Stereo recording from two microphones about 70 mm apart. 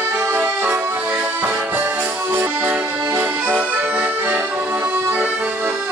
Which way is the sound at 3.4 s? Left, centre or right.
Right.